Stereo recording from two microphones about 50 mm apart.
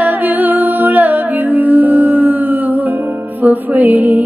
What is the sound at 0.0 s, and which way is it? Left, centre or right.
Music, right.